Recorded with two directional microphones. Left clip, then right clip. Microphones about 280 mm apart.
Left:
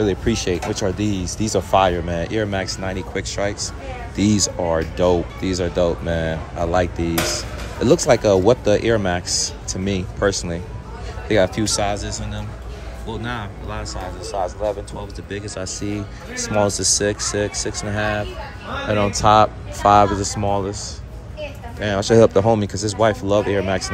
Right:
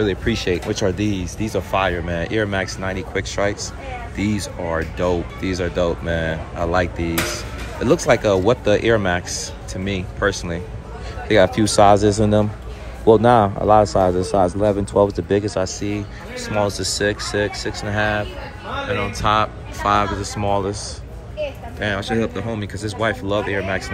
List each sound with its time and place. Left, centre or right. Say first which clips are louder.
0.0 s speech: even; centre
15.0 s speech: right 11 dB; centre
21.7 s speech: left 7 dB; centre